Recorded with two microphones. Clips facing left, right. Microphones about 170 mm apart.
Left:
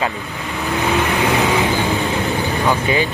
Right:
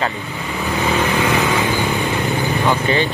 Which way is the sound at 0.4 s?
Centre (ahead or behind).